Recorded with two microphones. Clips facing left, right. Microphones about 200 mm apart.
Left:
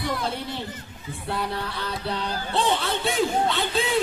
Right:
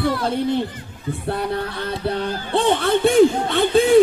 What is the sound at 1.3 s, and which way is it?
Music, 55° right (ahead or behind).